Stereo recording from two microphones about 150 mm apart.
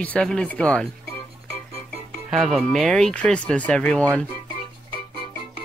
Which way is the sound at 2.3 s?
Centre (ahead or behind).